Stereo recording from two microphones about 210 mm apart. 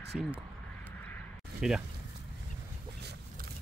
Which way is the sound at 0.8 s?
10° left (ahead or behind).